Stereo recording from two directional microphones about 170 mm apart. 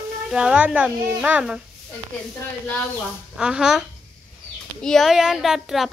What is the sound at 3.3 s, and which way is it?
Speech, 5° right (ahead or behind).